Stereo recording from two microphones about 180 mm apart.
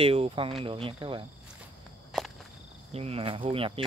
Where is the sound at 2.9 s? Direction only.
35° right (ahead or behind).